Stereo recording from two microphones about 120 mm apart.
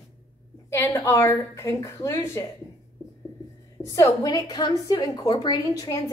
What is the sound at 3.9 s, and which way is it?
A woman's voice, 30° left (ahead or behind).